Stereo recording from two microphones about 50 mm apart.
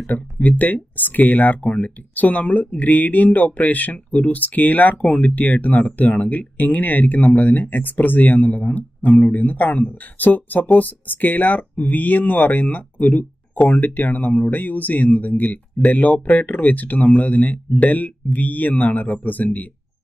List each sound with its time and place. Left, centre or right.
0.0 s speech: left